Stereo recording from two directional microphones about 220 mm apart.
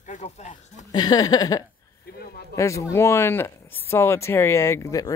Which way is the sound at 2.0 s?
45° left (ahead or behind).